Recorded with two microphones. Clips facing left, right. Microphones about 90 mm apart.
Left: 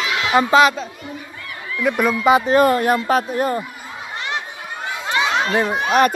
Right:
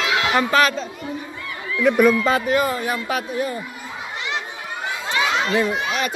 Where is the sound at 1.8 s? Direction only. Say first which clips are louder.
Right 3 dB; centre (ahead or behind).